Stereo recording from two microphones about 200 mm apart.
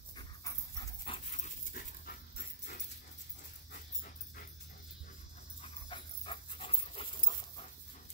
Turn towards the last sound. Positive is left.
turn(degrees=25)  # may be behind; listen again after turning